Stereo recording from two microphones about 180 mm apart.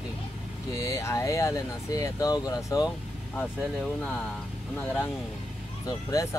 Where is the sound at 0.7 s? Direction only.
15° left (ahead or behind).